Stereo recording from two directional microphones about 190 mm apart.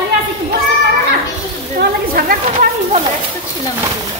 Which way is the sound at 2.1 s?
45° right (ahead or behind).